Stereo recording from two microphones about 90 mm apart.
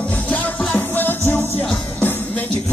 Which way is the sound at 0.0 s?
15° left (ahead or behind).